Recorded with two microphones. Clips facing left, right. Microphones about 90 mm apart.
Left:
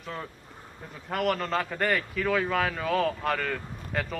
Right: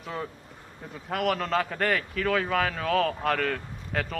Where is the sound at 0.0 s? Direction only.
5° right (ahead or behind).